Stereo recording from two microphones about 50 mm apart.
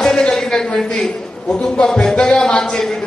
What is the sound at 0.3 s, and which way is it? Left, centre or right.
A man's voice, centre.